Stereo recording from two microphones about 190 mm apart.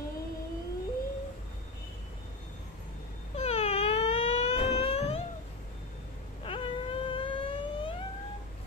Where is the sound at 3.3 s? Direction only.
35° left (ahead or behind).